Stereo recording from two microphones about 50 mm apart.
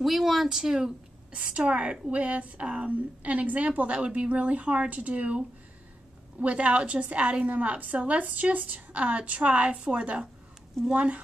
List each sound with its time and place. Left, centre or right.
0.0 s speech: centre
1.3 s a woman's voice: right
6.4 s a woman's voice: right